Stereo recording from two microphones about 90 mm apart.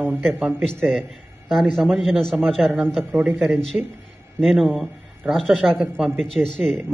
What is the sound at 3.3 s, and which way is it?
A man's voice, 5° left (ahead or behind).